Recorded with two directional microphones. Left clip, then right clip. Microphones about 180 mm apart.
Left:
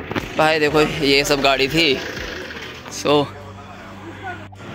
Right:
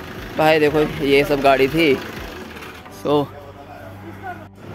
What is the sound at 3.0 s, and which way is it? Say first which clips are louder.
Speech: left 2 dB; 10° right (ahead or behind).